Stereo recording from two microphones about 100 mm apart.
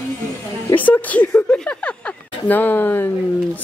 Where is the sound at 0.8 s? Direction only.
15° left (ahead or behind).